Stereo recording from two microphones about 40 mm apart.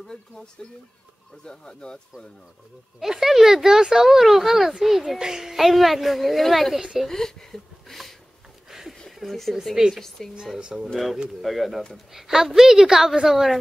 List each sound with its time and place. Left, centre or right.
0.0 s speech: centre
3.0 s speech: centre
7.1 s speech: centre
8.6 s a sound: centre
9.1 s speech: centre
10.6 s speech: centre
11.4 s speech: centre